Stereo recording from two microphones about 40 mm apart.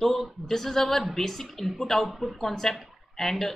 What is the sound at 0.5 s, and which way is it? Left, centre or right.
A woman's voice, centre.